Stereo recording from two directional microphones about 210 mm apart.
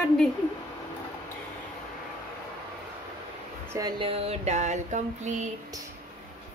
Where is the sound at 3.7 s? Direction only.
20° right (ahead or behind).